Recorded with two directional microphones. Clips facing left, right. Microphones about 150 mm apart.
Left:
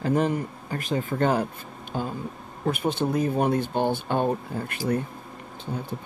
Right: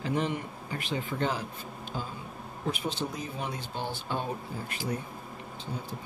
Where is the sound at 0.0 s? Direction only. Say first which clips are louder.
Left 7 dB; 45° left (ahead or behind).